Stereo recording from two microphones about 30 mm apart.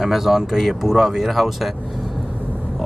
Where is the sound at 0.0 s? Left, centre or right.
Centre.